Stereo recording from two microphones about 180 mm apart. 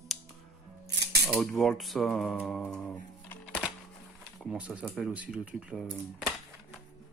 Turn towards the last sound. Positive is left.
turn(degrees=-5)  # may be behind; listen again after turning